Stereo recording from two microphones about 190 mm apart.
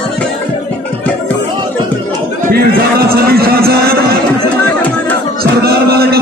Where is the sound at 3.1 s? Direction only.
55° right (ahead or behind).